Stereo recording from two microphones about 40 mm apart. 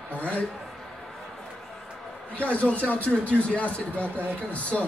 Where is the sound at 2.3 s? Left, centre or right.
Left.